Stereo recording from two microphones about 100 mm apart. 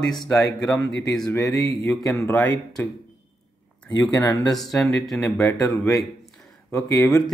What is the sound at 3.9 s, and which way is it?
Speech, 15° left (ahead or behind).